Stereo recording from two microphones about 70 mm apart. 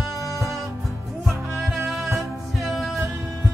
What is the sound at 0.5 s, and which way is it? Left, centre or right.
Music, centre.